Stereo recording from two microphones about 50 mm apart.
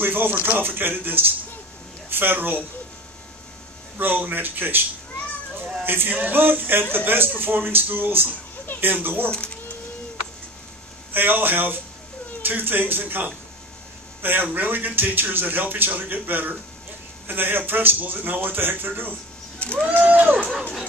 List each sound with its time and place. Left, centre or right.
0.0 s a man's voice: right
4.0 s a man's voice: right
5.9 s a man's voice: right
11.1 s a man's voice: right